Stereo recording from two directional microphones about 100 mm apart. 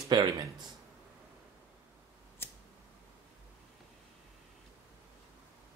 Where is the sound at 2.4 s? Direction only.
25° left (ahead or behind).